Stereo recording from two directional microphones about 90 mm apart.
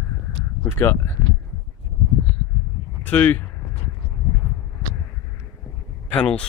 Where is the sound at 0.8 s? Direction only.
30° left (ahead or behind).